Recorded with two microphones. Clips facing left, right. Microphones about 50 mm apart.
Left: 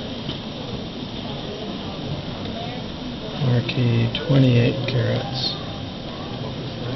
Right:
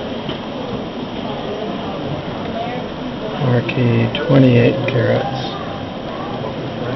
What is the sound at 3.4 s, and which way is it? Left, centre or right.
Speech, right.